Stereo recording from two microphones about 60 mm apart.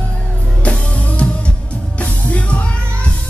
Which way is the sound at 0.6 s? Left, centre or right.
Left.